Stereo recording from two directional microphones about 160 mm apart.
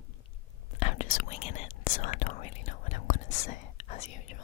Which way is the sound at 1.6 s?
55° left (ahead or behind).